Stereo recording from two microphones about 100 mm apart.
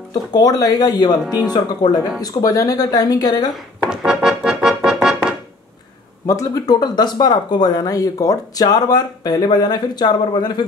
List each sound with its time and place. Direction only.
0.3 s speech: 40° left (ahead or behind)
3.9 s music: 5° right (ahead or behind)
6.2 s speech: 35° left (ahead or behind)